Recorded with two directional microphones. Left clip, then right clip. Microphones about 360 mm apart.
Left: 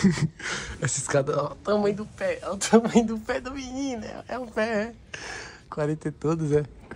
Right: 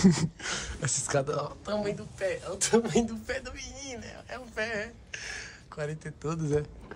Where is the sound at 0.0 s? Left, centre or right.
Centre.